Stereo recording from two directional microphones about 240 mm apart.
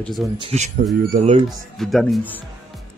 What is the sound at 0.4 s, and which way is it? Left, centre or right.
Speech, right.